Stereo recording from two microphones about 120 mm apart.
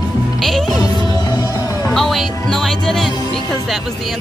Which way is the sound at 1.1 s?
35° left (ahead or behind).